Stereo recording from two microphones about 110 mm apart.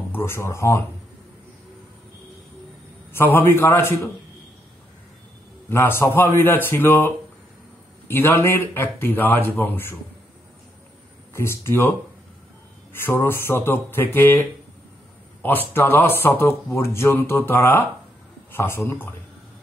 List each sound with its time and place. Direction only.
0.1 s speech: 20° left (ahead or behind)
3.1 s speech: 20° left (ahead or behind)
5.7 s speech: 20° left (ahead or behind)
11.3 s speech: 25° left (ahead or behind)
12.9 s speech: 20° left (ahead or behind)
15.7 s speech: 20° left (ahead or behind)